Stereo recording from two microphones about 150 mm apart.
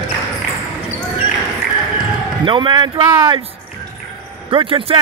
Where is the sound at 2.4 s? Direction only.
35° right (ahead or behind).